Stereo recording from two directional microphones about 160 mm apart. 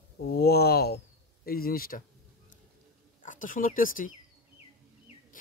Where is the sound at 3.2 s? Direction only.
55° left (ahead or behind).